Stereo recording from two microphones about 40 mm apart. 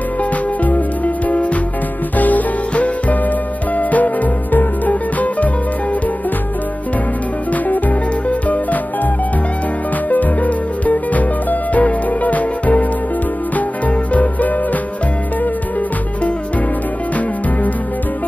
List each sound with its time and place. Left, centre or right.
0.2 s music: left
7.5 s music: left
10.0 s music: left